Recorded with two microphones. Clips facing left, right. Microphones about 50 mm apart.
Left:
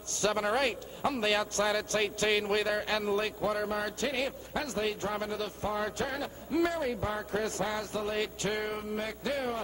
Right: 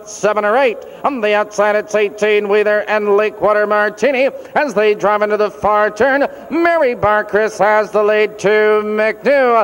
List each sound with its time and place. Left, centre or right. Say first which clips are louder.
0.2 s a man's voice: right 16 dB; right